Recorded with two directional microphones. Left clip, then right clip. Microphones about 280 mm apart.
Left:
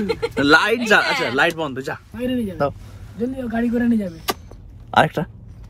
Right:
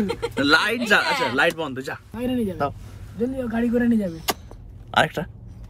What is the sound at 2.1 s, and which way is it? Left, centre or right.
Speech, centre.